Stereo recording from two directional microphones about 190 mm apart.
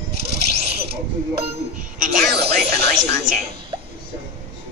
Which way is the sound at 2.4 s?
60° right (ahead or behind).